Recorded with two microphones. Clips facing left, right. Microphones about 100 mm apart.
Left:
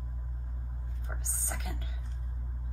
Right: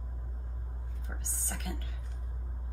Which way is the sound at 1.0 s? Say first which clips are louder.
Left 2 dB; 20° left (ahead or behind).